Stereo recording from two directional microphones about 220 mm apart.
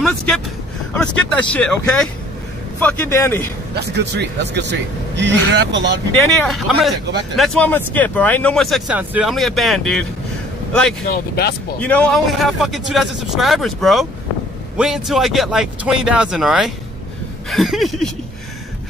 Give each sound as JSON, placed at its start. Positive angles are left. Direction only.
{"t": 0.0, "sound": "a man's voice", "side_deg": 5}
{"t": 3.7, "sound": "a man's voice", "side_deg": -50}
{"t": 6.1, "sound": "speech", "side_deg": 0}
{"t": 11.1, "sound": "speech", "side_deg": 45}
{"t": 11.8, "sound": "speech", "side_deg": 5}